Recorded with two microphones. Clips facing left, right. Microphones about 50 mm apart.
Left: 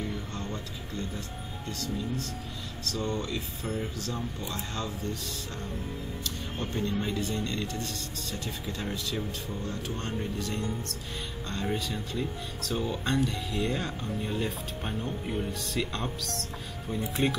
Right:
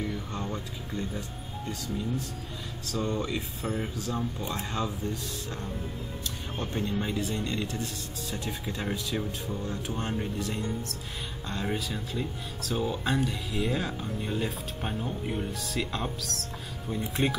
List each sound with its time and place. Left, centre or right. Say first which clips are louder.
0.3 s speech: right 2 dB; centre